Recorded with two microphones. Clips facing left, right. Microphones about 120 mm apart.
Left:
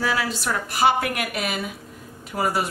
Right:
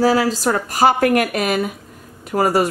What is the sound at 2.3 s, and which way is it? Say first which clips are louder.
Speech: right 7 dB; 60° right (ahead or behind).